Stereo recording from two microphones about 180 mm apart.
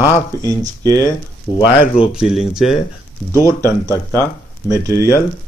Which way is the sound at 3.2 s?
15° left (ahead or behind).